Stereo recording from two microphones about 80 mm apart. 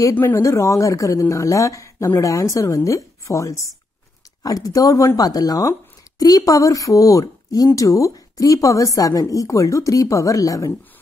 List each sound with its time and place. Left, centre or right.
0.1 s speech: left
0.4 s a woman's voice: left